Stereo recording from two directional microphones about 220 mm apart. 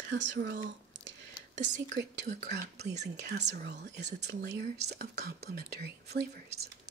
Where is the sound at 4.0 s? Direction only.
30° right (ahead or behind).